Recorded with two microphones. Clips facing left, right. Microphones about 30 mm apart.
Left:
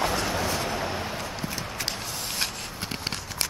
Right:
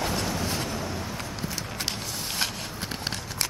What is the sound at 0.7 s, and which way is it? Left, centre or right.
Vehicle, left.